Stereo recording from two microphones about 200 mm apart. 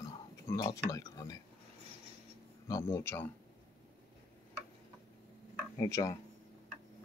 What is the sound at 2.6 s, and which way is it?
Speech, 15° left (ahead or behind).